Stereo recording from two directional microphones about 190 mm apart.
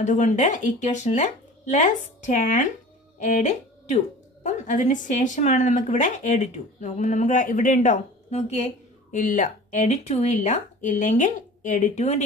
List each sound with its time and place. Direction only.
0.0 s speech: 40° left (ahead or behind)